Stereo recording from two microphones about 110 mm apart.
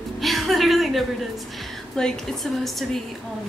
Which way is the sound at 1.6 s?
5° left (ahead or behind).